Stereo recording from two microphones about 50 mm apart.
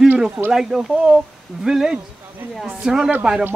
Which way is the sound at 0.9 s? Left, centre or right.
Right.